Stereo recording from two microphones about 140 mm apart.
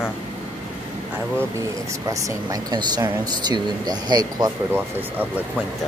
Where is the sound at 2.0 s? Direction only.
25° right (ahead or behind).